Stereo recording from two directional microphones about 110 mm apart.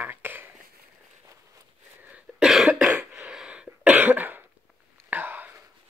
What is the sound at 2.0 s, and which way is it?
Cough, 10° right (ahead or behind).